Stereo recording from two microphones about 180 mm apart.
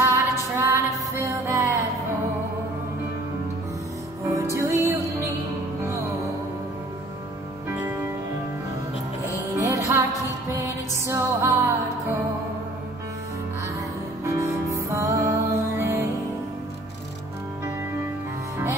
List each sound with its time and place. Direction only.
0.0 s music: 15° right (ahead or behind)
4.3 s music: 15° right (ahead or behind)
7.6 s music: 15° right (ahead or behind)
9.6 s music: 15° right (ahead or behind)
14.2 s music: 15° right (ahead or behind)